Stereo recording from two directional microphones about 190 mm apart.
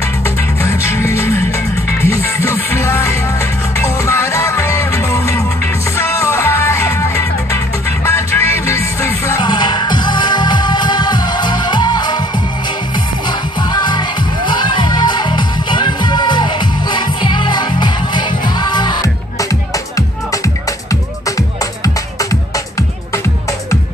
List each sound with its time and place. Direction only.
0.6 s music: 15° left (ahead or behind)
13.6 s music: 25° left (ahead or behind)
20.9 s music: 15° left (ahead or behind)